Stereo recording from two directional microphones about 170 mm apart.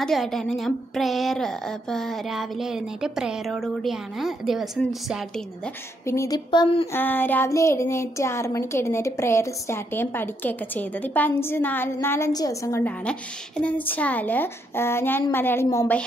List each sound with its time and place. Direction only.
0.0 s speech: centre (ahead or behind)
6.0 s a woman's voice: 20° left (ahead or behind)
6.9 s speech: 10° left (ahead or behind)